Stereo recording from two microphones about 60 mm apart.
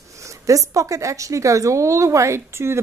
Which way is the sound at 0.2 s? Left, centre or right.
Right.